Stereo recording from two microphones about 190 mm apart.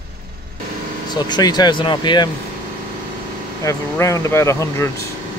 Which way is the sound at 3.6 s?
15° left (ahead or behind).